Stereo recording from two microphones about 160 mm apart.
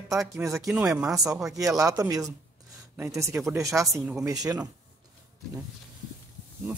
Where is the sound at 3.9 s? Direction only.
Centre (ahead or behind).